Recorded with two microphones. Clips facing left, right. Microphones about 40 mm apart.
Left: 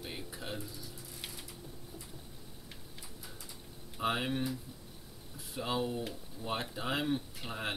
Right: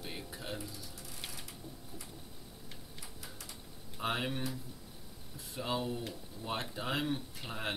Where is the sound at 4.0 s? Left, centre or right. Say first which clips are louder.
Left 2 dB; centre.